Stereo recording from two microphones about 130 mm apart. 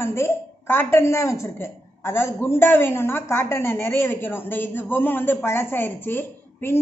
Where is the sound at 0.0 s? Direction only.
20° left (ahead or behind).